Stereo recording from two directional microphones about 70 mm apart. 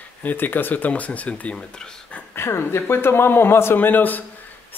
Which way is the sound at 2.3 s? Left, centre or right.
Left.